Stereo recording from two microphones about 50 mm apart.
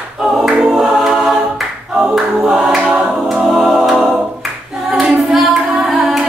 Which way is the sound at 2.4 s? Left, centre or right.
Centre.